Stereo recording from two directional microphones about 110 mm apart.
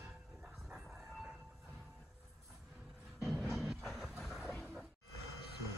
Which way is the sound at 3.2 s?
5° right (ahead or behind).